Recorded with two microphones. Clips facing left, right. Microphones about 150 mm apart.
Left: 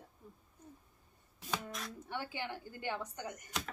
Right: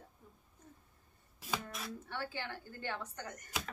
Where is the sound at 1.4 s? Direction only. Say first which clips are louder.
Even; 5° right (ahead or behind).